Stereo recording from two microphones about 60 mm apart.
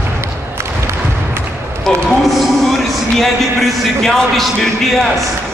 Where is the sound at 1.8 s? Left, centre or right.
Centre.